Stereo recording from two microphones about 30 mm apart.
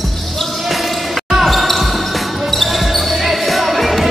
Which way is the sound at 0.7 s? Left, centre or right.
Centre.